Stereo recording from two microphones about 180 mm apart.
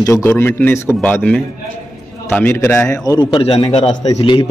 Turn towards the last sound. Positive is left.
turn(degrees=25)  # may be behind; listen again after turning